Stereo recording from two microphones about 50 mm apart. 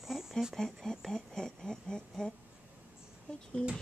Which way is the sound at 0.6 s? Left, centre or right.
Centre.